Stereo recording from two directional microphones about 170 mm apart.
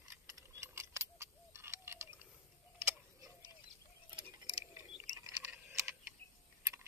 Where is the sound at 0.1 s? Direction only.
15° right (ahead or behind).